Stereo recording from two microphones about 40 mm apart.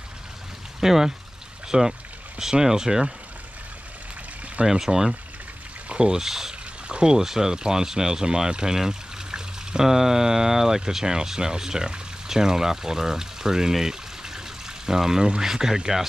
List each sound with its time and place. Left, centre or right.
0.7 s speech: centre
4.6 s speech: centre